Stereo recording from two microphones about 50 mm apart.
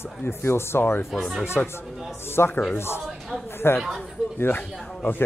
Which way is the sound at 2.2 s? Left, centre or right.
Left.